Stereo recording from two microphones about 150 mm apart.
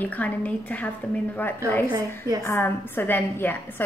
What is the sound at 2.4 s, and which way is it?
A woman's voice, 15° left (ahead or behind).